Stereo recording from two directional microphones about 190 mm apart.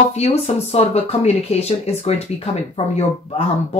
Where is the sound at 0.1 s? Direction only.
35° left (ahead or behind).